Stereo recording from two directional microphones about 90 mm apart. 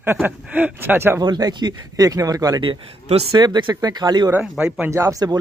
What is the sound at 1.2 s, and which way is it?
Speech, 50° right (ahead or behind).